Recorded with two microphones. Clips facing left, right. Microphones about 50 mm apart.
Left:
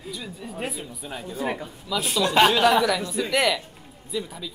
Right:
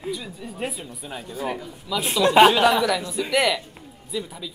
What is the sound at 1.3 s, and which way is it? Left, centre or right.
Speech, left.